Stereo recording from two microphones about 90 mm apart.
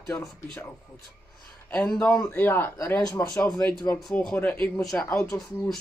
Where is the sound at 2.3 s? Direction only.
25° left (ahead or behind).